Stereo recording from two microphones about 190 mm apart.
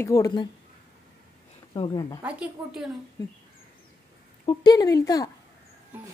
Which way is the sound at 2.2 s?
5° right (ahead or behind).